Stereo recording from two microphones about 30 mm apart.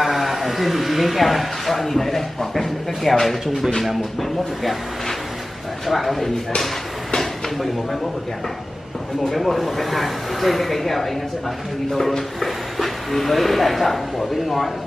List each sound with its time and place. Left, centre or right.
0.0 s speech: centre
5.9 s speech: centre
7.2 s drawer open or close: centre
9.3 s speech: centre
11.9 s speech: centre
12.4 s speech: centre